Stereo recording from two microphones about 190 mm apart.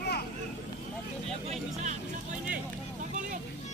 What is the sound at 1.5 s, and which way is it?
Music, 40° right (ahead or behind).